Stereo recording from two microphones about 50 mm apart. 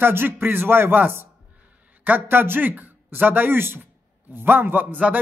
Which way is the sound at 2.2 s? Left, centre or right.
Right.